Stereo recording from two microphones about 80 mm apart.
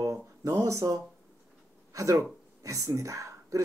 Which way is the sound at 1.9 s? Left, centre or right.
Right.